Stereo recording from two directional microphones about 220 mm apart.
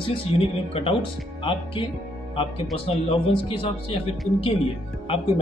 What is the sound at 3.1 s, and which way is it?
Speech, 25° left (ahead or behind).